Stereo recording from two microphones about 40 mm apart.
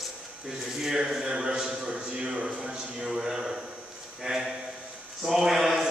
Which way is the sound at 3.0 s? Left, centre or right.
Centre.